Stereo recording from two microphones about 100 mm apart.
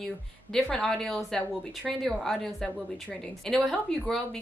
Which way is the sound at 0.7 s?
5° left (ahead or behind).